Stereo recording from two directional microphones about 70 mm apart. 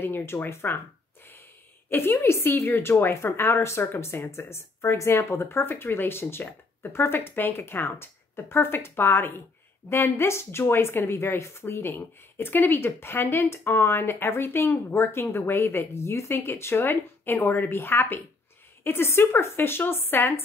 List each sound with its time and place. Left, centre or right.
0.0 s speech: left
1.9 s a woman's voice: left